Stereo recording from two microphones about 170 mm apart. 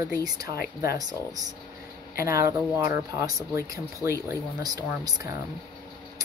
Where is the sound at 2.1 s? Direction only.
60° left (ahead or behind).